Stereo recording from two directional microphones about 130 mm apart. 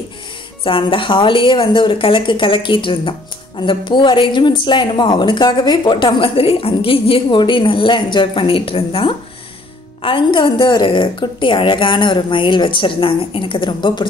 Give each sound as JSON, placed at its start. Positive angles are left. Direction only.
{"t": 0.7, "sound": "a woman's voice", "side_deg": 40}